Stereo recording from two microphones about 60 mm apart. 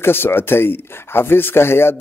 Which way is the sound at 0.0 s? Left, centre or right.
Left.